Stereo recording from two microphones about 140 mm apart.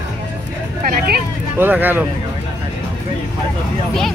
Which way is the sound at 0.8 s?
90° right.